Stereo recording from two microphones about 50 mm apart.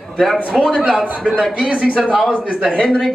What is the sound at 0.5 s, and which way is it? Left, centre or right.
Speech, centre.